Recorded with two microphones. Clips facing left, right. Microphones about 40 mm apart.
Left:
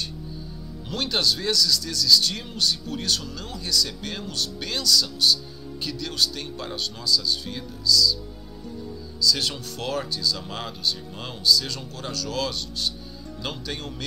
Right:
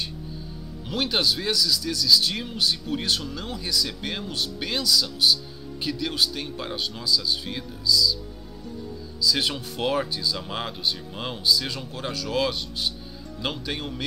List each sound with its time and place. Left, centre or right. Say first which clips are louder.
0.8 s speech: right 1 dB; centre
9.2 s speech: even; centre